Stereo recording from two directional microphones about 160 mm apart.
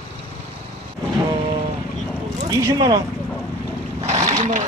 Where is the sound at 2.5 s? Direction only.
25° right (ahead or behind).